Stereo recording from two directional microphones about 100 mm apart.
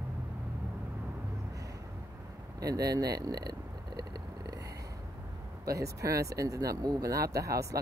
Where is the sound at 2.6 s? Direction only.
40° right (ahead or behind).